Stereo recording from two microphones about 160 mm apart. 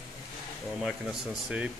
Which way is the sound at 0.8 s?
5° right (ahead or behind).